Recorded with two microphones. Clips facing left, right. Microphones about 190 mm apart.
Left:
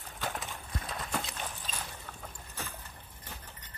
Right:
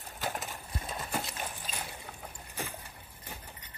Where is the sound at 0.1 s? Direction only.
Centre (ahead or behind).